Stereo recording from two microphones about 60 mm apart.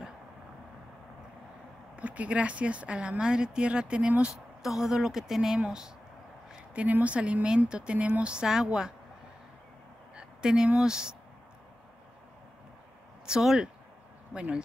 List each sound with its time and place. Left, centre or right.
2.0 s speech: right
4.6 s speech: centre
10.1 s a sound: centre
10.8 s speech: centre
13.3 s speech: centre